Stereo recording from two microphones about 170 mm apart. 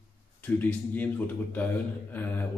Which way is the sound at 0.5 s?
10° left (ahead or behind).